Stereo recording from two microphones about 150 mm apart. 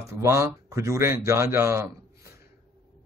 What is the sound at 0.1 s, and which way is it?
Speech, 20° right (ahead or behind).